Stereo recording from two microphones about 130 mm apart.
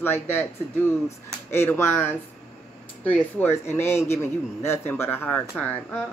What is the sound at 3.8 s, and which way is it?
A woman's voice, 20° left (ahead or behind).